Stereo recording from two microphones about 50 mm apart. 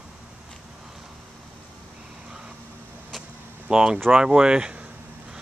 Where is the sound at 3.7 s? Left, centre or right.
Centre.